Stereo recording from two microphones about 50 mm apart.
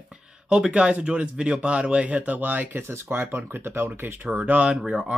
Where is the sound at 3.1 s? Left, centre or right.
Right.